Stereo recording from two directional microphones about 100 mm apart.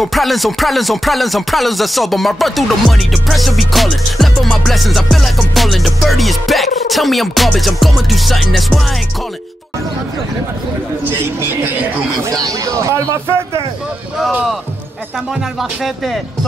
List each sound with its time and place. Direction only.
0.0 s music: centre (ahead or behind)
11.1 s a man's voice: 20° right (ahead or behind)
12.3 s a man's voice: 35° right (ahead or behind)